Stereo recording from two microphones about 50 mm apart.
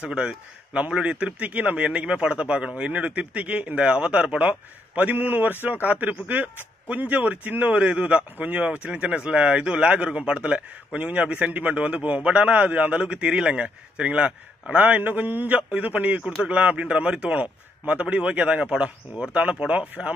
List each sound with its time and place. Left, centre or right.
0.0 s a man's voice: centre